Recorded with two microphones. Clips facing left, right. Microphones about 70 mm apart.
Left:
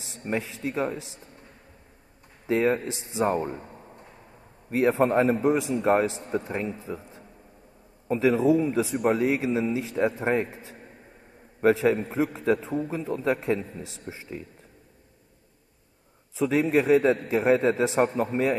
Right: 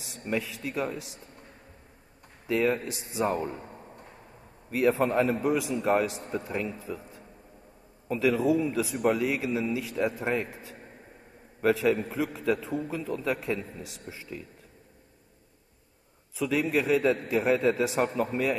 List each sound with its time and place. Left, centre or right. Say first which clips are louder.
0.0 s speech: left 1 dB; left
2.4 s a man's voice: left 3 dB; left
3.6 s a sound: even; centre
4.6 s a man's voice: left 3 dB; left
16.3 s a man's voice: left 4 dB; left